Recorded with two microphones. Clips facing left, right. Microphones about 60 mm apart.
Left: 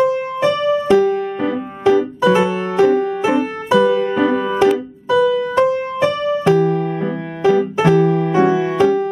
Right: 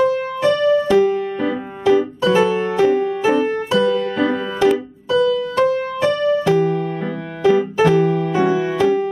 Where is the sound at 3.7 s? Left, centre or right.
Left.